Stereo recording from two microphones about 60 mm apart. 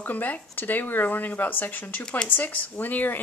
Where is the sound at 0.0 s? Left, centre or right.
Left.